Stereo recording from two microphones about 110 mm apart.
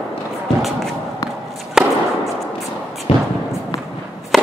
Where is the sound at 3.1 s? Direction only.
55° left (ahead or behind).